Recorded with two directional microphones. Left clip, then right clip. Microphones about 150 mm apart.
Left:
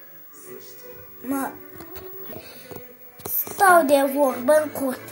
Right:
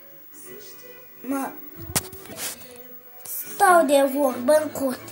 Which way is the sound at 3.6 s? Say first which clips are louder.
Left 1 dB; centre (ahead or behind).